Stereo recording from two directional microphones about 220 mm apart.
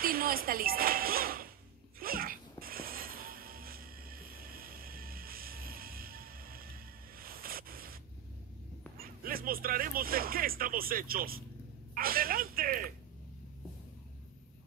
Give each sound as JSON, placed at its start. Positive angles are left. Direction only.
{"t": 0.0, "sound": "speech", "side_deg": -40}
{"t": 2.0, "sound": "music", "side_deg": -40}
{"t": 7.2, "sound": "a sound", "side_deg": -40}
{"t": 8.9, "sound": "speech", "side_deg": -40}